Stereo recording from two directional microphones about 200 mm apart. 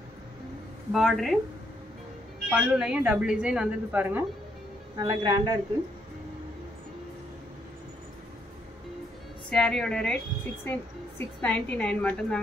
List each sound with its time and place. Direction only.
0.9 s a woman's voice: centre (ahead or behind)
2.5 s a woman's voice: 5° right (ahead or behind)
4.9 s speech: 20° right (ahead or behind)
9.5 s a woman's voice: 5° left (ahead or behind)